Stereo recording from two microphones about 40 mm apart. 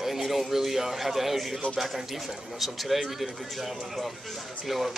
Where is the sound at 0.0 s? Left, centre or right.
Centre.